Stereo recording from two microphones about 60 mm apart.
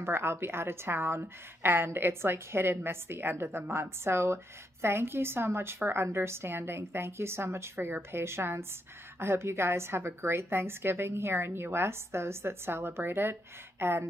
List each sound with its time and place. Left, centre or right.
0.0 s a woman's voice: right